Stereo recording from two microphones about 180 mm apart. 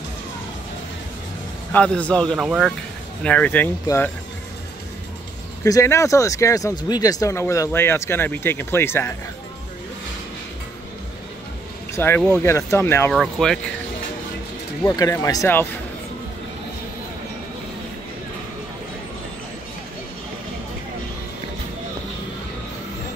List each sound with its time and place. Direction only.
1.7 s speech: 5° left (ahead or behind)
2.3 s speech: 5° right (ahead or behind)
3.3 s speech: 10° left (ahead or behind)
5.6 s speech: 15° left (ahead or behind)
11.9 s speech: 15° left (ahead or behind)
13.1 s speech: centre (ahead or behind)
14.8 s speech: 15° left (ahead or behind)